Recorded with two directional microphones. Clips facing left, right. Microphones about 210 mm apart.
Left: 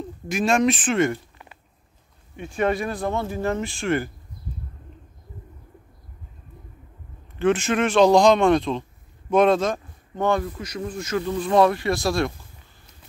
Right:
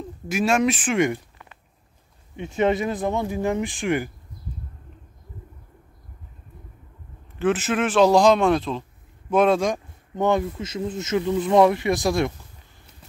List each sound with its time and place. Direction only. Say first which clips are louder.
0.3 s speech: even; 5° right (ahead or behind)
2.3 s speech: right 2 dB; 20° right (ahead or behind)
7.3 s a man's voice: left 1 dB; 5° right (ahead or behind)